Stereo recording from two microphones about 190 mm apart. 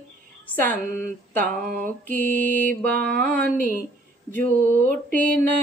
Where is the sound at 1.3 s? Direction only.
10° left (ahead or behind).